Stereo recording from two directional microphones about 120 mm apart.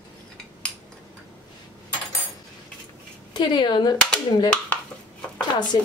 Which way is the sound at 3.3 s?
40° left (ahead or behind).